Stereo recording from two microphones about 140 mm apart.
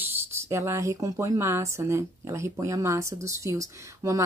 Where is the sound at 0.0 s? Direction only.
20° right (ahead or behind).